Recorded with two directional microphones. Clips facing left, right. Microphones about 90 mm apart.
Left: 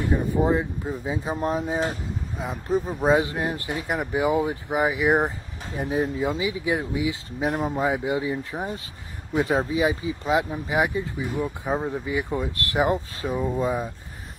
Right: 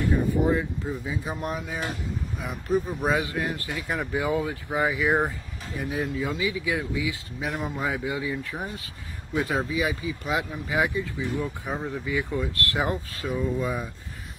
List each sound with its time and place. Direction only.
0.0 s speech: 20° left (ahead or behind)